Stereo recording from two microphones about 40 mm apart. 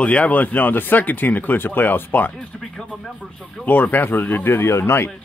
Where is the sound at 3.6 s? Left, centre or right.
Left.